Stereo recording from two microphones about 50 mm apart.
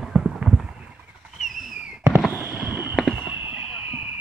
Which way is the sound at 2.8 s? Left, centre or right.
Centre.